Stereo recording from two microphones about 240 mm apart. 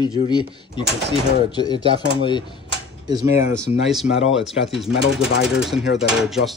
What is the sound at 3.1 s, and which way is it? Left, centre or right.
Speech, centre.